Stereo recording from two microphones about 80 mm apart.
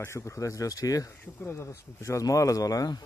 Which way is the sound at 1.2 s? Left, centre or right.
Left.